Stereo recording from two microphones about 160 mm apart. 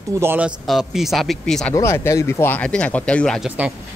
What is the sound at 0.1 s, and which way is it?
Speech, 15° right (ahead or behind).